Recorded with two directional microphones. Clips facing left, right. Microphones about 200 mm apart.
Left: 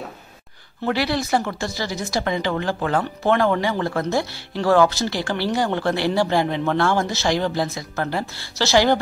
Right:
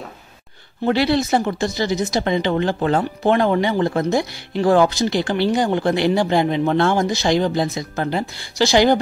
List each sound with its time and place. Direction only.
0.8 s speech: 25° right (ahead or behind)